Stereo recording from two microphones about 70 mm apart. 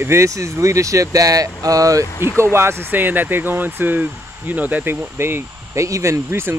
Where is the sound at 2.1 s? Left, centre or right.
Left.